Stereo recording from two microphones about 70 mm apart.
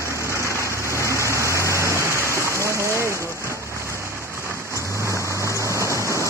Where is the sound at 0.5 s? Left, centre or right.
Right.